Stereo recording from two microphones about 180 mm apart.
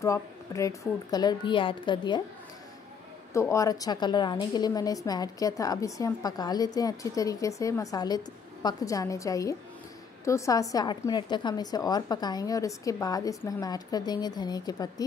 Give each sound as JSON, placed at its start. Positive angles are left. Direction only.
{"t": 0.0, "sound": "a woman's voice", "side_deg": 15}
{"t": 3.3, "sound": "a woman's voice", "side_deg": 15}